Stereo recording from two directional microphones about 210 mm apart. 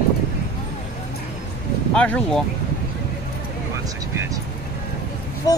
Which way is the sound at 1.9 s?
5° left (ahead or behind).